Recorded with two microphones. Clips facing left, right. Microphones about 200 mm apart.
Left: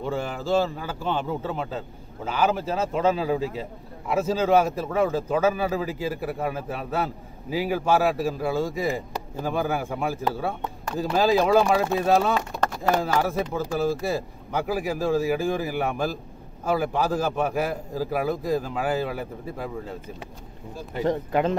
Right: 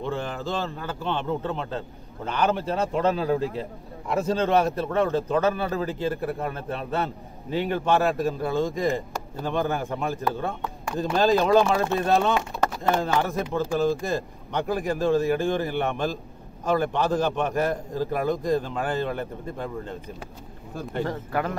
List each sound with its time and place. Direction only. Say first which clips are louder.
0.0 s a man's voice: left 1 dB; 10° left (ahead or behind)
21.0 s speech: left 5 dB; 20° left (ahead or behind)